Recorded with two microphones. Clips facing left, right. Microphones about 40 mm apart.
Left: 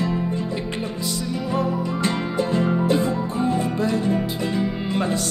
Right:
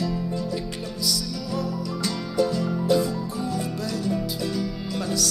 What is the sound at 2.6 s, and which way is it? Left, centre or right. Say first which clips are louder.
Music: left 2 dB; left.